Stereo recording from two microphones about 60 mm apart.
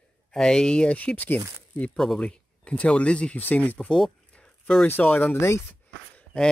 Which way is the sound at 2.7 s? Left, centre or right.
Centre.